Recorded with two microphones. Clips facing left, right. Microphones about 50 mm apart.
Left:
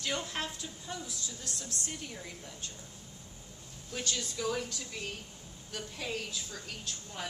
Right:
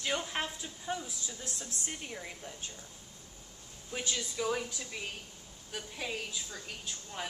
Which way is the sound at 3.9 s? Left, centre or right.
Centre.